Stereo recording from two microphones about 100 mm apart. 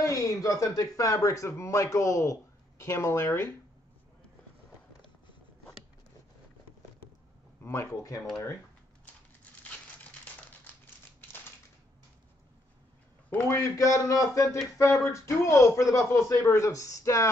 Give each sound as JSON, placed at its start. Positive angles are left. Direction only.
{"t": 0.0, "sound": "speech", "side_deg": 30}
{"t": 7.6, "sound": "speech", "side_deg": 25}
{"t": 13.6, "sound": "speech", "side_deg": 30}